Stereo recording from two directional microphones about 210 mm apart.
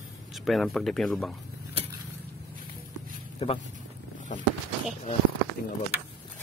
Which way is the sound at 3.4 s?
25° left (ahead or behind).